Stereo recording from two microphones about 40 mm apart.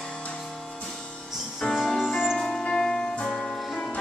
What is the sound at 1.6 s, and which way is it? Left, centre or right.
Music, centre.